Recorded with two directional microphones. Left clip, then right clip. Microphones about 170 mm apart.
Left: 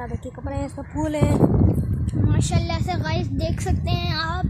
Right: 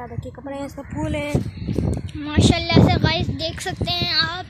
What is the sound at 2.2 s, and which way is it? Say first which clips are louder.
Speech: right 8 dB; 15° right (ahead or behind).